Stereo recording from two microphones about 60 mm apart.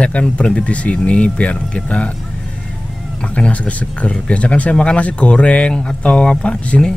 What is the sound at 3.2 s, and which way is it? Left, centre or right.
Speech, left.